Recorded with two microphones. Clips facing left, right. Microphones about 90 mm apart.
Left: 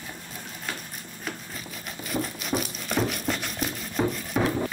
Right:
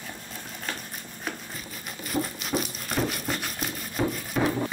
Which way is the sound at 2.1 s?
Centre (ahead or behind).